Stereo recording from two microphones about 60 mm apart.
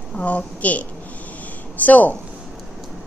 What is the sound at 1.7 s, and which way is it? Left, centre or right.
Speech, left.